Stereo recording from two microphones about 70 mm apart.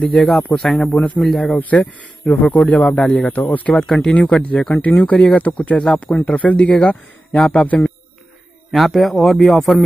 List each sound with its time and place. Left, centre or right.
0.0 s a man's voice: centre; by 3.7 s left
3.7 s a man's voice: centre
7.3 s a man's voice: centre
7.6 s a man's voice: left
8.7 s a man's voice: centre